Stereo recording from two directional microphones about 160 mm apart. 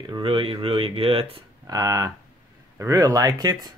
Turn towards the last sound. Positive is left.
turn(degrees=-20)  # may be behind; listen again after turning